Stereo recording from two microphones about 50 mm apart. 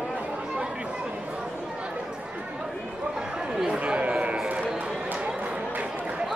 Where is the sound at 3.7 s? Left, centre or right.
Right.